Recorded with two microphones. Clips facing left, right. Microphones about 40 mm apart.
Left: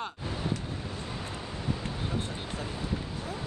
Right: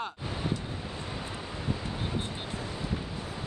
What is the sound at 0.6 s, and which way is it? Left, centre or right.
Vehicle, centre.